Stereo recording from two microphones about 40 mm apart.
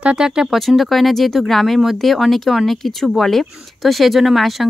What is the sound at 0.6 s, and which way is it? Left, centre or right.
Speech, centre.